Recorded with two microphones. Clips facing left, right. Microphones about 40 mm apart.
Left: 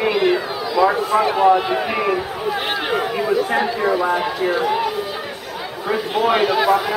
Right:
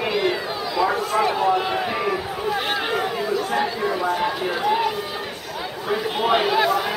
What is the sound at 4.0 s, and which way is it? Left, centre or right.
Speech, centre.